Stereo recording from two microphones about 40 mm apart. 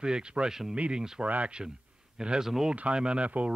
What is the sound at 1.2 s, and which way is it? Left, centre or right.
Speech, right.